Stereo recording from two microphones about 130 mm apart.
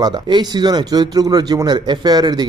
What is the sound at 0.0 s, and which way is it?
Speech, 30° right (ahead or behind).